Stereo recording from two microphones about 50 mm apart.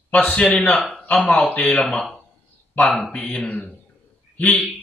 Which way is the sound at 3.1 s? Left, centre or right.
Left.